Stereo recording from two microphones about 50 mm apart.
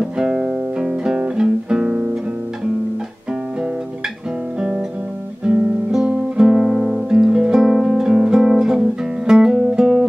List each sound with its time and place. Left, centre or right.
0.0 s music: centre
4.6 s guitar: centre
6.0 s music: centre